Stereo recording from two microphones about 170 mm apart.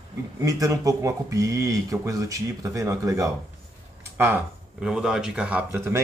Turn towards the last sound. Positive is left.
turn(degrees=-10)  # may be behind; listen again after turning